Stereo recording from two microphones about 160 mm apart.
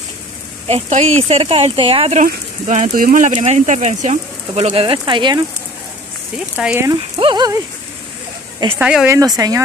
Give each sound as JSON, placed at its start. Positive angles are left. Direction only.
{"t": 0.7, "sound": "speech", "side_deg": -45}
{"t": 2.6, "sound": "speech", "side_deg": -50}
{"t": 6.3, "sound": "speech", "side_deg": -10}
{"t": 7.2, "sound": "speech", "side_deg": -30}
{"t": 8.7, "sound": "speech", "side_deg": -10}
{"t": 9.1, "sound": "speech", "side_deg": -20}